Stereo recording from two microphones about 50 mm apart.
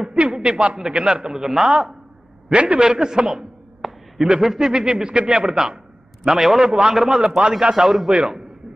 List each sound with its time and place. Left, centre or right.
0.1 s a sound: right
0.7 s a man's voice: centre
2.5 s a man's voice: right
3.8 s a sound: centre
4.2 s a man's voice: centre
7.8 s a man's voice: centre